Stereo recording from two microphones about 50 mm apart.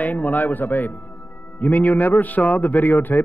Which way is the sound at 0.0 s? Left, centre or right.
Left.